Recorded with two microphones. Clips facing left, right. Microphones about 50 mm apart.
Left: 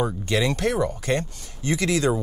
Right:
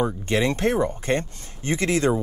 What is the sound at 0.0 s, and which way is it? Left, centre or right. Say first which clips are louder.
Speech: right 1 dB; right.